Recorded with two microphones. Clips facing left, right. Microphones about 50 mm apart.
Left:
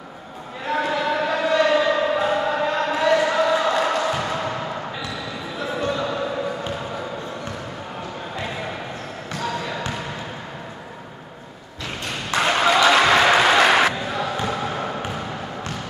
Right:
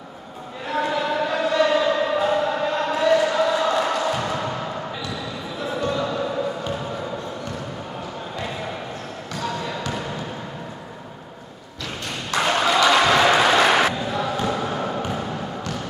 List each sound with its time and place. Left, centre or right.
0.7 s chant: centre
5.6 s basketball bounce: centre
9.5 s basketball bounce: centre
12.4 s a sound: centre